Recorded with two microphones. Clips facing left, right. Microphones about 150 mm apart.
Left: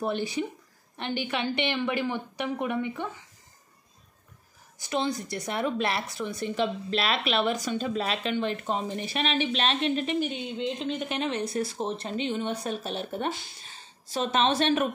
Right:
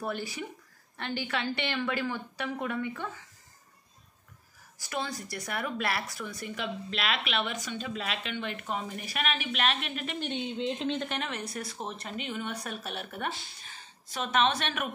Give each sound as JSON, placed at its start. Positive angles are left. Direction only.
{"t": 0.0, "sound": "a woman's voice", "side_deg": 20}
{"t": 4.7, "sound": "a woman's voice", "side_deg": 20}
{"t": 10.1, "sound": "speech", "side_deg": 5}
{"t": 11.0, "sound": "a woman's voice", "side_deg": 20}